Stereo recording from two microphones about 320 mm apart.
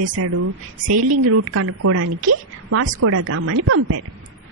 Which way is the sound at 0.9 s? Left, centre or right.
Right.